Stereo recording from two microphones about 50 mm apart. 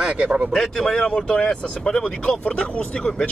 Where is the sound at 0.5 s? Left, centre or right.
Centre.